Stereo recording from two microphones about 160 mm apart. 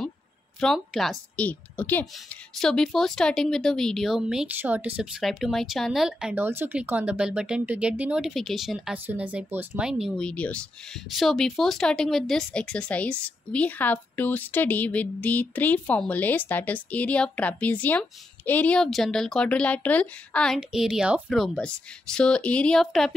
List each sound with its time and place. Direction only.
0.6 s a woman's voice: centre (ahead or behind)